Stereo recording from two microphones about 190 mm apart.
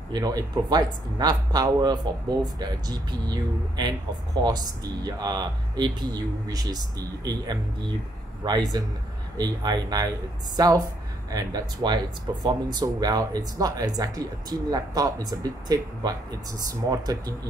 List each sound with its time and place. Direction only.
0.1 s speech: 20° right (ahead or behind)